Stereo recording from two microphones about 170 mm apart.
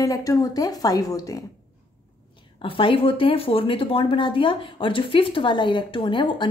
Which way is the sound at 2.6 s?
30° left (ahead or behind).